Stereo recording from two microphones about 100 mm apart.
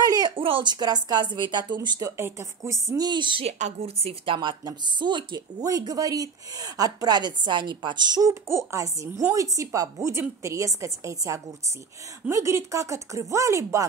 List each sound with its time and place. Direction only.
0.0 s a sound: 40° right (ahead or behind)
0.4 s speech: 60° right (ahead or behind)
0.7 s a woman's voice: 40° right (ahead or behind)
2.0 s speech: 30° right (ahead or behind)
3.1 s a woman's voice: 55° right (ahead or behind)
3.4 s a woman's voice: 85° right
4.4 s speech: 50° right (ahead or behind); by 13.8 s 30° right (ahead or behind)